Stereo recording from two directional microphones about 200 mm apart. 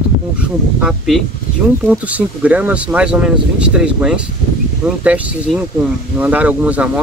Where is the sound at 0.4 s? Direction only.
5° right (ahead or behind).